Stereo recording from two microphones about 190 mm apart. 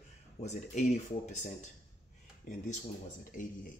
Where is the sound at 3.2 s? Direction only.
45° left (ahead or behind).